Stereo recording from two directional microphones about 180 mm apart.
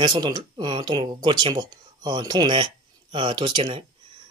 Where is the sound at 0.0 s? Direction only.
25° right (ahead or behind).